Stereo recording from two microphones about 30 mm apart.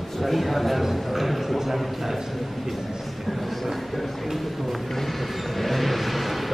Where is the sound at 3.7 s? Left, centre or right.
Centre.